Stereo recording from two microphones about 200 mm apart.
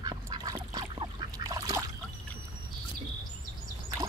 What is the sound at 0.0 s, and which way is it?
Duck, 20° right (ahead or behind).